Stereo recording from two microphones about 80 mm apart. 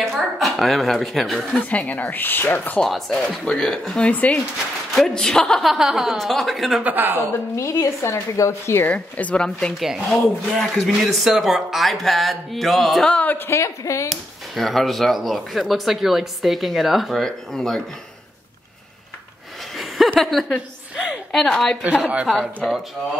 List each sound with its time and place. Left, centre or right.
0.0 s a woman's voice: centre
1.5 s speech: centre
2.8 s speech: centre
4.9 s speech: centre
6.8 s speech: right
7.5 s a woman's voice: left
8.8 s speech: centre
9.8 s speech: centre
13.1 s speech: centre
13.5 s a woman's voice: left
14.5 s speech: centre
20.2 s a woman's voice: centre
22.0 s speech: centre